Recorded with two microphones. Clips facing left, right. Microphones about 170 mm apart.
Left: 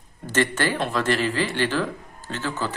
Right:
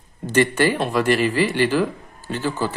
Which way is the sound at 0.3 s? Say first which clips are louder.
Right 5 dB; 15° right (ahead or behind).